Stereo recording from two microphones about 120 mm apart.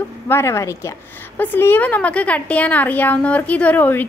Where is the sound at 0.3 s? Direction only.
20° left (ahead or behind).